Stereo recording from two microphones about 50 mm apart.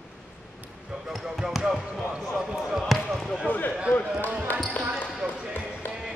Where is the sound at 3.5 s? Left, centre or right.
Left.